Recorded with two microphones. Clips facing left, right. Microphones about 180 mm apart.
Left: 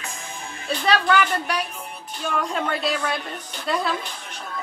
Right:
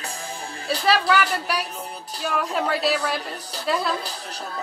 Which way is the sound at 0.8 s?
5° right (ahead or behind).